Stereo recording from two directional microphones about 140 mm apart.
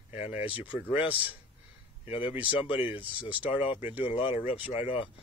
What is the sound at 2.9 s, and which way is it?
Speech, 10° right (ahead or behind).